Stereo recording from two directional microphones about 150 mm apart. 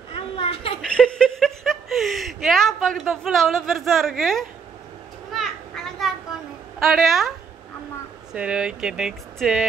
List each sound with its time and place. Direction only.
0.1 s a sound: 40° left (ahead or behind)
0.8 s chuckle: 5° left (ahead or behind)
5.3 s children playing: centre (ahead or behind)
6.8 s speech: centre (ahead or behind)